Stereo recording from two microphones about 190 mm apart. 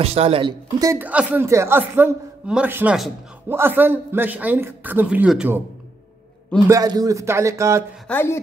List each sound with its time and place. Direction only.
0.0 s speech: 30° right (ahead or behind); by 5.6 s 5° right (ahead or behind)
6.7 s speech: 20° right (ahead or behind)
8.1 s speech: 10° left (ahead or behind)